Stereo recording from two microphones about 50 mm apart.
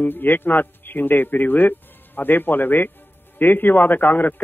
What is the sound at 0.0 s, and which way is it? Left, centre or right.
A man's voice, left.